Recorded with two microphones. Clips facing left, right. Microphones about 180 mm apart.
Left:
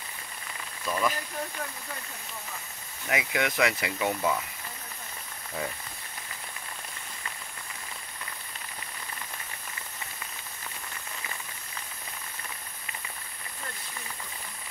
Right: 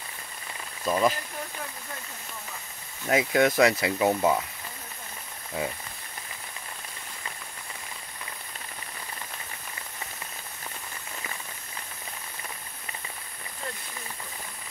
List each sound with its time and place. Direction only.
0.8 s speech: 35° right (ahead or behind)
3.1 s speech: 35° right (ahead or behind)